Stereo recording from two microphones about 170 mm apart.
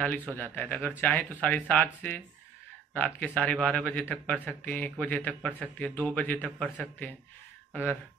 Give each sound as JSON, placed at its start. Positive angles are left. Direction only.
{"t": 0.3, "sound": "speech", "side_deg": 10}